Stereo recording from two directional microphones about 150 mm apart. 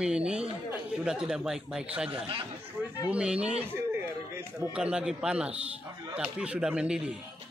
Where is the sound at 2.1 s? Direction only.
35° right (ahead or behind).